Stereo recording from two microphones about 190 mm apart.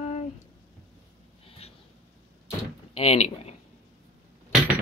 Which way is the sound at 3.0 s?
35° left (ahead or behind).